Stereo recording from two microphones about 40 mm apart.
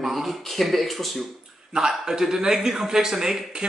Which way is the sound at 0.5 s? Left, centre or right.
Centre.